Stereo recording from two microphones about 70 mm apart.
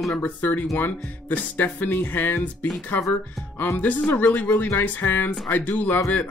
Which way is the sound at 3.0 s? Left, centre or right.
Left.